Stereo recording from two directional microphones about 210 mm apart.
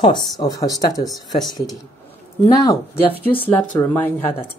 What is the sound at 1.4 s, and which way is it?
Speech, centre (ahead or behind).